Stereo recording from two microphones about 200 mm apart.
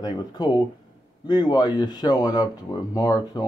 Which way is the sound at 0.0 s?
20° left (ahead or behind).